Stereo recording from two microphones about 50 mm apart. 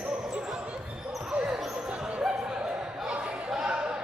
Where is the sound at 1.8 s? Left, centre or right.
Centre.